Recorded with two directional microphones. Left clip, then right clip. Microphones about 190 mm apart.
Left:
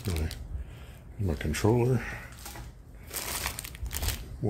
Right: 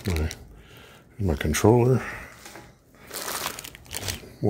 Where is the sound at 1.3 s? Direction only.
55° right (ahead or behind).